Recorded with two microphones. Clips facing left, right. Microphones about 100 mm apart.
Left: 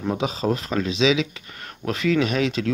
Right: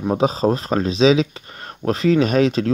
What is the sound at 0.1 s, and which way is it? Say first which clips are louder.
Speech: right 6 dB; 35° right (ahead or behind).